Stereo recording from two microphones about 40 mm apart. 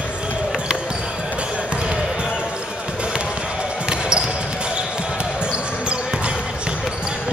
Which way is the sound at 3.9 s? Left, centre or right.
Right.